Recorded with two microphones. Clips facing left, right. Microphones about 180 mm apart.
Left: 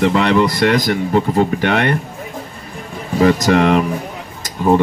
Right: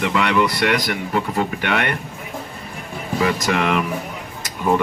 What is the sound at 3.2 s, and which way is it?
Speech, 40° left (ahead or behind).